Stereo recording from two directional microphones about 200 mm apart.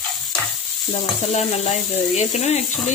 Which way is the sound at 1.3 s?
35° left (ahead or behind).